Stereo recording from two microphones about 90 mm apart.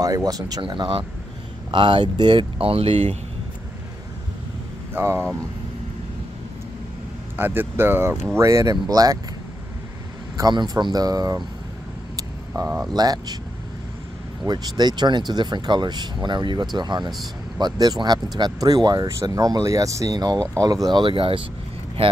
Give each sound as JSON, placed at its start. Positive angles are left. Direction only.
{"t": 0.0, "sound": "speech", "side_deg": -45}
{"t": 0.6, "sound": "speech", "side_deg": -65}
{"t": 2.6, "sound": "speech", "side_deg": -90}
{"t": 4.9, "sound": "speech", "side_deg": -25}
{"t": 7.3, "sound": "speech", "side_deg": -25}
{"t": 8.4, "sound": "speech", "side_deg": -35}
{"t": 10.5, "sound": "speech", "side_deg": -55}
{"t": 12.2, "sound": "vehicle", "side_deg": -40}
{"t": 12.9, "sound": "speech", "side_deg": -50}
{"t": 14.5, "sound": "speech", "side_deg": -55}
{"t": 19.0, "sound": "speech", "side_deg": -35}
{"t": 21.0, "sound": "speech", "side_deg": -75}